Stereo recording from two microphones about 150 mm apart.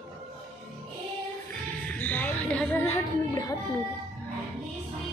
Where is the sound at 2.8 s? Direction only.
20° left (ahead or behind).